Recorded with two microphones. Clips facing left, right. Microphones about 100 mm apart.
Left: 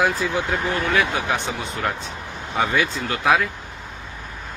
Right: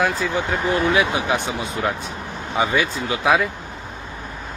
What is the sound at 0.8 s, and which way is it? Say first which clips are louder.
Speech: right 2 dB; 15° right (ahead or behind).